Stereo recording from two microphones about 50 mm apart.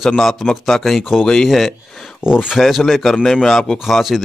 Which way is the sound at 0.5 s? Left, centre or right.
Centre.